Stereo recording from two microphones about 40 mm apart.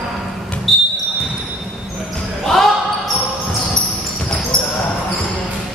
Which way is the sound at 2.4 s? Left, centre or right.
Centre.